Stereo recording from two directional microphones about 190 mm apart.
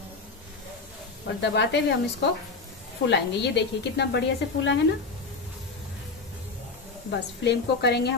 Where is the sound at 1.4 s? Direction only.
65° left (ahead or behind).